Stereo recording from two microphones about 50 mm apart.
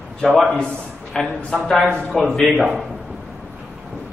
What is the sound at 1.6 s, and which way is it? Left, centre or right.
A man's voice, centre.